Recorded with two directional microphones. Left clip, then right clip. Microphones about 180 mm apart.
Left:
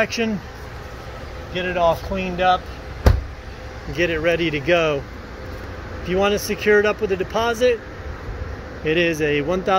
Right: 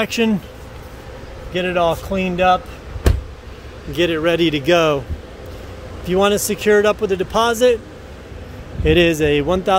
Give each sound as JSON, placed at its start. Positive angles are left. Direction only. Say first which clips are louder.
{"t": 0.0, "sound": "speech", "louder": "right 2 dB", "side_deg": -30}
{"t": 1.5, "sound": "speech", "louder": "right 2 dB", "side_deg": -55}
{"t": 3.9, "sound": "speech", "louder": "right 3 dB", "side_deg": -35}
{"t": 6.0, "sound": "speech", "louder": "right 4 dB", "side_deg": -35}
{"t": 8.8, "sound": "speech", "louder": "right 5 dB", "side_deg": -45}